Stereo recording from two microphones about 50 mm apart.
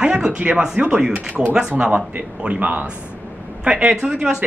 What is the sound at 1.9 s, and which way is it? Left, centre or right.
Speech, right.